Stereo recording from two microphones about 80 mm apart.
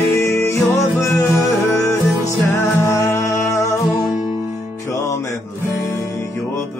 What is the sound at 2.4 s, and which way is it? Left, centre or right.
Music, left.